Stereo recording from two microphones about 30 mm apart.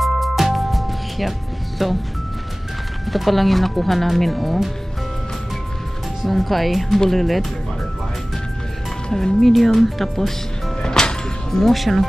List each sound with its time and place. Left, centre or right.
0.0 s music: centre
1.8 s speech: centre
3.1 s speech: centre
6.2 s speech: centre
9.4 s speech: centre
10.8 s music: left
11.5 s speech: centre